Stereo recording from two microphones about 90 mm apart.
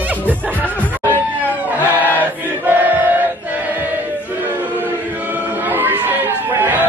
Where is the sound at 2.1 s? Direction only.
20° right (ahead or behind).